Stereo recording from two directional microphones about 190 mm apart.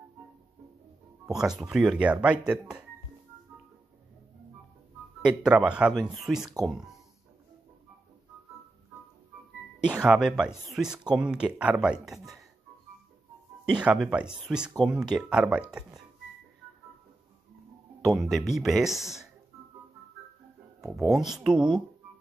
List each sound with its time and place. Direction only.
1.2 s speech: 5° right (ahead or behind)
5.4 s speech: 5° right (ahead or behind)
9.8 s speech: 5° right (ahead or behind)
13.7 s speech: 5° right (ahead or behind)
18.0 s speech: centre (ahead or behind)
20.8 s speech: centre (ahead or behind)